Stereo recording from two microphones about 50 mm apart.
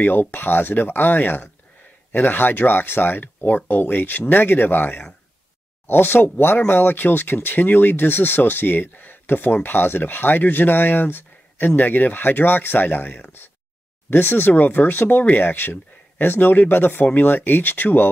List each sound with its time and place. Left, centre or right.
0.0 s speech: left